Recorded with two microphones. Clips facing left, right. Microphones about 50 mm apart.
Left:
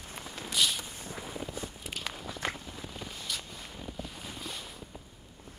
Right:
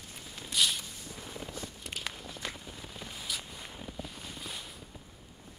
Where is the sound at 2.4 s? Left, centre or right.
Left.